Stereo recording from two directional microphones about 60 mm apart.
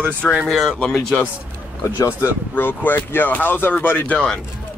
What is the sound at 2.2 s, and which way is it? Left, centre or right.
Speech, left.